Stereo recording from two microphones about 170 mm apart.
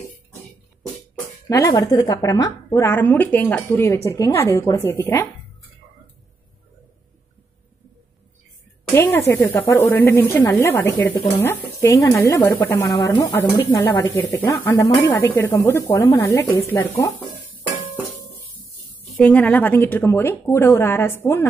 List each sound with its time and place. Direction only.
1.5 s a woman's voice: 20° left (ahead or behind)
8.9 s a woman's voice: 10° left (ahead or behind)
19.1 s a woman's voice: 5° left (ahead or behind)